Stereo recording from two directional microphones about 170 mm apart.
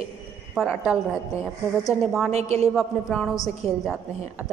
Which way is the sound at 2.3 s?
35° right (ahead or behind).